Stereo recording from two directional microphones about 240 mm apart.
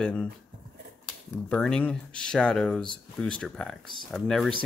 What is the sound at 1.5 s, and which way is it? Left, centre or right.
Speech, centre.